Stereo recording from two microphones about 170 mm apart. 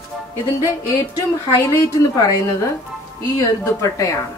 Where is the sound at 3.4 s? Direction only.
20° left (ahead or behind).